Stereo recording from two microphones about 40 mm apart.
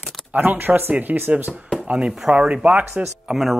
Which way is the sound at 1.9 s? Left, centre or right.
Centre.